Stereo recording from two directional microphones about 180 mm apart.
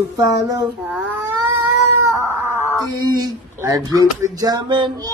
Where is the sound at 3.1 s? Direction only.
20° right (ahead or behind).